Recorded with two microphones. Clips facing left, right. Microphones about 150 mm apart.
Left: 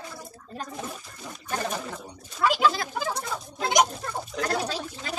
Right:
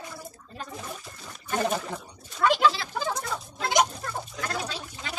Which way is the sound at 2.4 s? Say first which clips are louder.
Right 1 dB; 5° left (ahead or behind).